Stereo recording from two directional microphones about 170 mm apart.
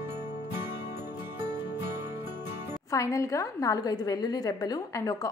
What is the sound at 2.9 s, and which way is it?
A woman's voice, 20° left (ahead or behind).